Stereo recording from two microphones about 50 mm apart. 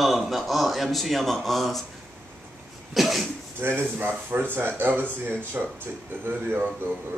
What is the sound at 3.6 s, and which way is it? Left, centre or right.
Speech, right.